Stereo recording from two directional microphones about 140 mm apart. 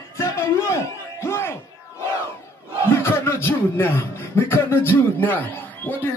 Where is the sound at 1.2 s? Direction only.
15° left (ahead or behind).